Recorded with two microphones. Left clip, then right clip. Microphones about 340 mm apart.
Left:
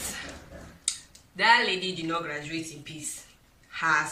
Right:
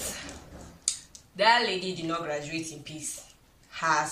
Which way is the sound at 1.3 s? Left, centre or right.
Centre.